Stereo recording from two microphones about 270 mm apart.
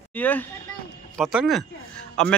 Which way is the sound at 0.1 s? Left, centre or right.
Centre.